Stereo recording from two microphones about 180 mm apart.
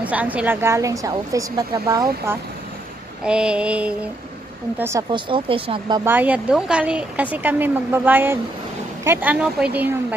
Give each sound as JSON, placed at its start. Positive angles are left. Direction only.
{"t": 0.0, "sound": "speech", "side_deg": -10}
{"t": 5.1, "sound": "speech", "side_deg": -30}
{"t": 6.0, "sound": "speech", "side_deg": -10}